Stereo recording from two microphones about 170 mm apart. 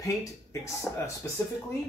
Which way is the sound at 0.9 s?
5° left (ahead or behind).